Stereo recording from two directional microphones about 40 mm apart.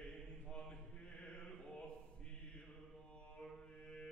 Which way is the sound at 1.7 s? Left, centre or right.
Left.